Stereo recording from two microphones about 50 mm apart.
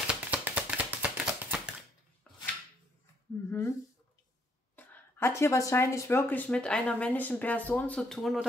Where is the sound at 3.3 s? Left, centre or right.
Left.